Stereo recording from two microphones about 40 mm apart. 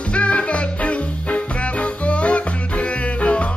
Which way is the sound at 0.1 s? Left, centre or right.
Left.